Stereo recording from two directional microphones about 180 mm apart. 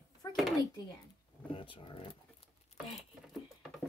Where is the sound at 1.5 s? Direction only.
30° left (ahead or behind).